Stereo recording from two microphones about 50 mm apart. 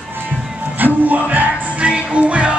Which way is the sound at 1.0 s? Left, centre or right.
Right.